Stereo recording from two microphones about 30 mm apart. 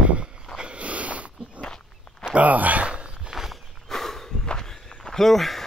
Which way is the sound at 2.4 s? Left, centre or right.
Right.